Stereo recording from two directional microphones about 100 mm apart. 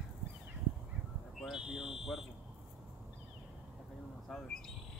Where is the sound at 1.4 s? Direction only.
5° right (ahead or behind).